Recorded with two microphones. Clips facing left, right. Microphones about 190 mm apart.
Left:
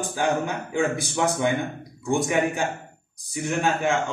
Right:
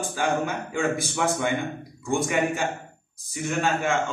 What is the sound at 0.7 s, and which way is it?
Speech, 15° left (ahead or behind).